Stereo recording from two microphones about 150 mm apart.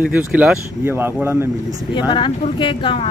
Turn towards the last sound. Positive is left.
turn(degrees=35)  # may be behind; listen again after turning